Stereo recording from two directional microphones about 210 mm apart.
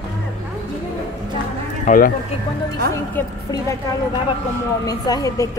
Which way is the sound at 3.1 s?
15° left (ahead or behind).